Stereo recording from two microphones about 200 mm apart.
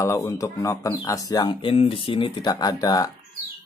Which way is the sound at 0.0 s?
15° left (ahead or behind).